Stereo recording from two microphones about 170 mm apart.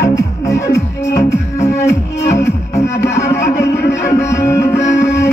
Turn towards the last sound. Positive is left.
turn(degrees=15)  # may be behind; listen again after turning